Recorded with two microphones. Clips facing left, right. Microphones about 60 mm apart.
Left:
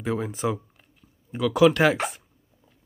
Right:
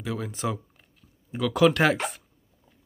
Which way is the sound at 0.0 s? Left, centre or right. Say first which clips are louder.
Left 4 dB; left.